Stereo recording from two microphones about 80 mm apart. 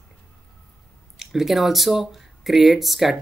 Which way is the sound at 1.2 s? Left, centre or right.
Centre.